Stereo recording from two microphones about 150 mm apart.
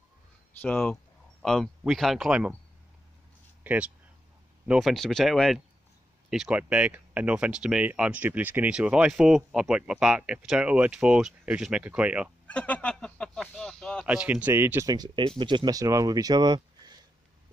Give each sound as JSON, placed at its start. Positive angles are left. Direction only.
{"t": 0.5, "sound": "speech", "side_deg": 10}
{"t": 3.6, "sound": "speech", "side_deg": -10}
{"t": 12.4, "sound": "speech", "side_deg": 10}
{"t": 14.0, "sound": "speech", "side_deg": -10}